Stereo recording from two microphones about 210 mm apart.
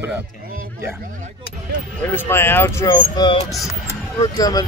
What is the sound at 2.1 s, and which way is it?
Speech, 10° left (ahead or behind).